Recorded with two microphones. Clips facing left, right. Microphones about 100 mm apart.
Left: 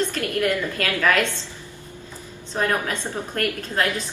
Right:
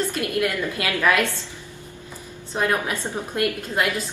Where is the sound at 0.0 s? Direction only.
15° right (ahead or behind).